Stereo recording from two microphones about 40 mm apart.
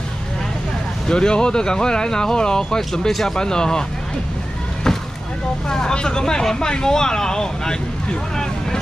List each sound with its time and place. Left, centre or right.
1.0 s speech: left
3.3 s speech: centre
5.7 s speech: centre